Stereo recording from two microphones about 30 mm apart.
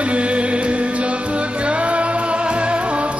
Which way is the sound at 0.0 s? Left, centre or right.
Right.